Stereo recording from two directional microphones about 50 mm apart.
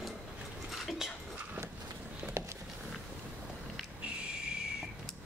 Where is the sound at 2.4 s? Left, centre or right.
Right.